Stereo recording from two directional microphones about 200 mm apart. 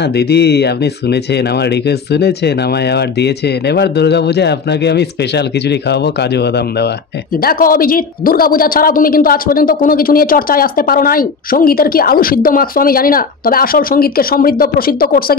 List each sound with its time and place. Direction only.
0.0 s speech: 55° left (ahead or behind)
7.4 s speech: 45° left (ahead or behind)